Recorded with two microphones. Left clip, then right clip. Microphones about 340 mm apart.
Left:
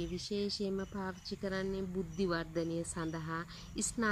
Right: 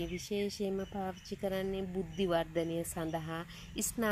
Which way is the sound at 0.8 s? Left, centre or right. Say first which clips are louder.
Right 2 dB; centre.